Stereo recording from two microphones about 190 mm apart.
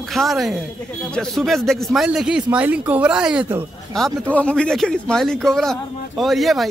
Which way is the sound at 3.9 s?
5° left (ahead or behind).